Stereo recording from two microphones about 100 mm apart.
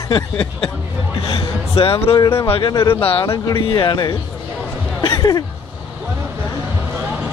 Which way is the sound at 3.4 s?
50° left (ahead or behind).